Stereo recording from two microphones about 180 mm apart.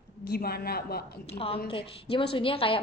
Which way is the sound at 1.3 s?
30° left (ahead or behind).